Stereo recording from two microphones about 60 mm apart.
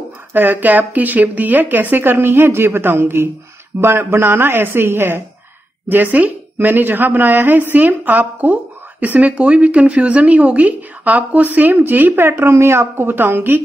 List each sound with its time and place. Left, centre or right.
0.3 s speech: right